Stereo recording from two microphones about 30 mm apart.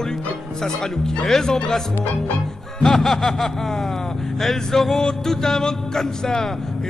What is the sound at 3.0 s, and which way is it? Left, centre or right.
A man's voice, centre.